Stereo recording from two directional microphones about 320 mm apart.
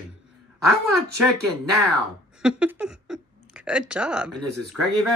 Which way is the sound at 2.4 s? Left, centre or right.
Centre.